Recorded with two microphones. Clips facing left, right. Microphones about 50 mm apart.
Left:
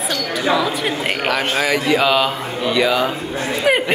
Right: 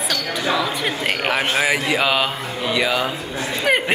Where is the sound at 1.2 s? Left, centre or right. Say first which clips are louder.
Left 1 dB; centre.